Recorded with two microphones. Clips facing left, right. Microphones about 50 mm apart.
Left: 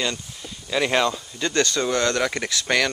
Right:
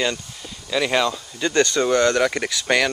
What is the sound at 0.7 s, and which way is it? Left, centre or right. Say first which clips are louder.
Speech: right 1 dB; centre.